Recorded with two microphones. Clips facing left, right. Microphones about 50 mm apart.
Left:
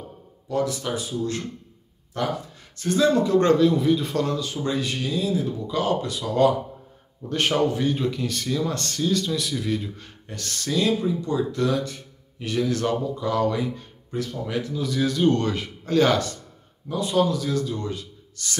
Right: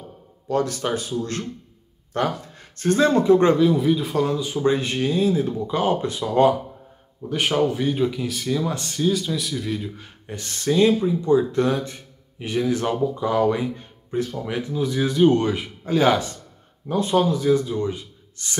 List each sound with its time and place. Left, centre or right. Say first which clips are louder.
0.5 s speech: right 3 dB; right
3.3 s speech: right 2 dB; centre
4.6 s speech: right 7 dB; right
7.2 s speech: right 1 dB; centre
10.2 s speech: right 6 dB; centre
16.8 s speech: right 2 dB; right